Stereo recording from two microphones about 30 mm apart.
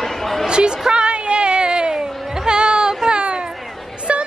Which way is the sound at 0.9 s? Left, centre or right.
Right.